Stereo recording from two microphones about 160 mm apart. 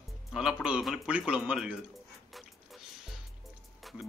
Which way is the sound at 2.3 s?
Centre (ahead or behind).